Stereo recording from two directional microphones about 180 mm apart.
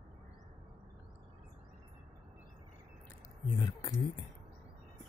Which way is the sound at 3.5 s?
20° left (ahead or behind).